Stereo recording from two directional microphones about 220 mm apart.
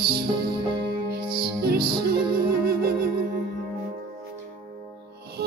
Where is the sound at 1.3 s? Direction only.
45° right (ahead or behind).